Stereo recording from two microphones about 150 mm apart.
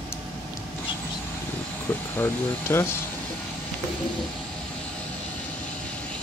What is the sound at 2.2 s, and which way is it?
Speech, 15° left (ahead or behind).